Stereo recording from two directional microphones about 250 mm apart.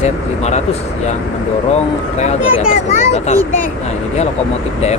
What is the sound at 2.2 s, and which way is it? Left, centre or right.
Speech, left.